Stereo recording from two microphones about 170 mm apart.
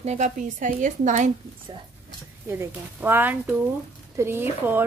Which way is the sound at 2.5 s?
10° right (ahead or behind).